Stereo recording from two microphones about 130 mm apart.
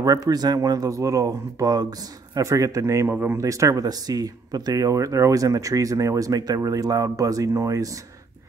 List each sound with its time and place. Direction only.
0.0 s speech: 30° right (ahead or behind)